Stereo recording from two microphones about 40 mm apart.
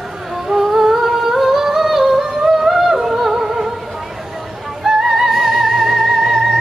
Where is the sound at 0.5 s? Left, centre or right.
Centre.